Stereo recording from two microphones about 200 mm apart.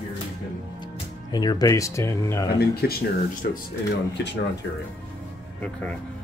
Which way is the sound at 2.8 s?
50° left (ahead or behind).